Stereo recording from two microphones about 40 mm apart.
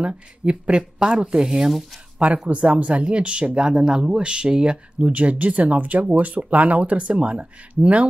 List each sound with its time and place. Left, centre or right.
0.0 s speech: right
2.1 s speech: right